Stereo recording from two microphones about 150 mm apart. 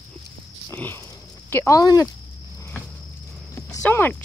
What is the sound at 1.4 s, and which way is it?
Speech, 15° left (ahead or behind).